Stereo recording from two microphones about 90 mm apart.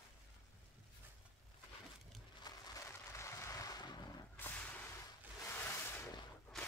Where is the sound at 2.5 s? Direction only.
45° left (ahead or behind).